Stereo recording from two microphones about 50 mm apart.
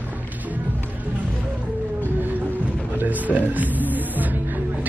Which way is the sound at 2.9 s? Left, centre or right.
Right.